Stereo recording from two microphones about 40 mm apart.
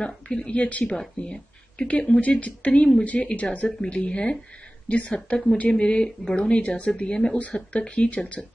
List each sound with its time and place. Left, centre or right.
0.0 s speech: left
0.6 s speech: left
0.8 s speech: left
1.9 s speech: left